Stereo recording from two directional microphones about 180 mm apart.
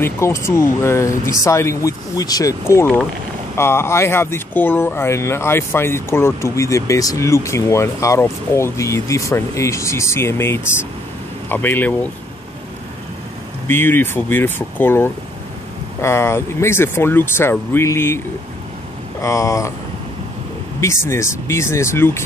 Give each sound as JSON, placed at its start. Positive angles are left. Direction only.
{"t": 0.0, "sound": "speech", "side_deg": 15}
{"t": 13.7, "sound": "speech", "side_deg": 10}
{"t": 19.2, "sound": "speech", "side_deg": 15}
{"t": 20.8, "sound": "speech", "side_deg": 15}